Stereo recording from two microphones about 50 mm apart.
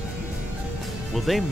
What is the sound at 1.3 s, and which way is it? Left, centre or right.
Speech, centre.